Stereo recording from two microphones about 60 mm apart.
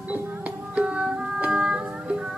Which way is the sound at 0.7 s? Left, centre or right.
Centre.